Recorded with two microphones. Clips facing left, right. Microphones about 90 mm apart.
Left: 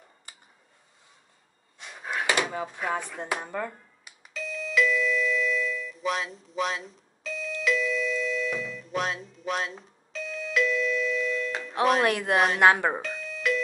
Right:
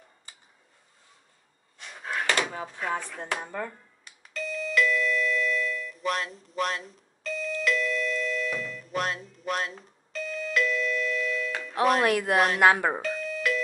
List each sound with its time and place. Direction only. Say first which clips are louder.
1.8 s drawer open or close: even; 10° left (ahead or behind)
11.8 s speech: even; centre (ahead or behind)
12.5 s speech: left 1 dB; 25° left (ahead or behind)
13.0 s doorbell: right 2 dB; centre (ahead or behind)